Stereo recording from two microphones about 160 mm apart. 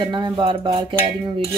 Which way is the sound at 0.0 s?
30° right (ahead or behind).